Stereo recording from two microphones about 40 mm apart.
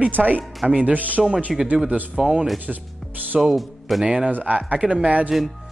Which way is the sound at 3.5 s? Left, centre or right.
Centre.